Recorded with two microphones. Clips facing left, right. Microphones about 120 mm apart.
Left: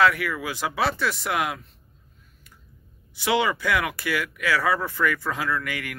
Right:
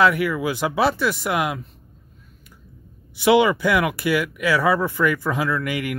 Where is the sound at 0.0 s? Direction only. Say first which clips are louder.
Right 3 dB; 15° right (ahead or behind).